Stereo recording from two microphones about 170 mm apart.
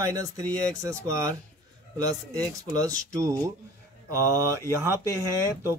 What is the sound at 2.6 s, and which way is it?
Speech, 20° right (ahead or behind).